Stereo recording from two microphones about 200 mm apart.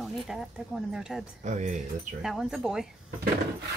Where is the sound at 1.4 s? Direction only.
35° right (ahead or behind).